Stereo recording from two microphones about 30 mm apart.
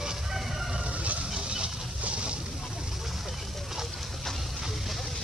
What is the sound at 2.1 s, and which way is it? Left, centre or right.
Boat, right.